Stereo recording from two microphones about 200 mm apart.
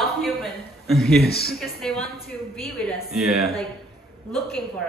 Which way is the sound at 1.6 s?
Centre (ahead or behind).